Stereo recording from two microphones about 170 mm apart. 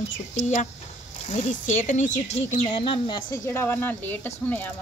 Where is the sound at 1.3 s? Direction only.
45° left (ahead or behind).